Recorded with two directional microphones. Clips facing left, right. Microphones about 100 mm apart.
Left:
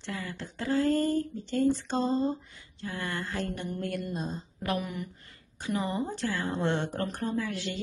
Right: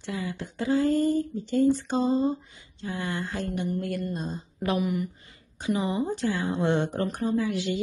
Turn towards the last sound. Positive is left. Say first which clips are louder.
# right 6 dB
turn(degrees=-15)  # may be behind; listen again after turning